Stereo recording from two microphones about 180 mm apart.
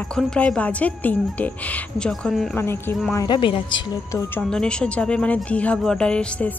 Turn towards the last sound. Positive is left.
turn(degrees=5)  # may be behind; listen again after turning